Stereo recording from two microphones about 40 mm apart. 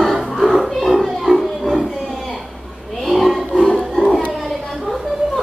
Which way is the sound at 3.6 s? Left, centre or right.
Centre.